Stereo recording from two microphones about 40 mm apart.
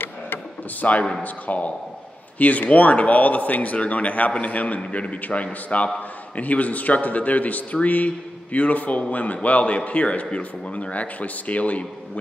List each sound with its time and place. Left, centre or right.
0.7 s a man's voice: left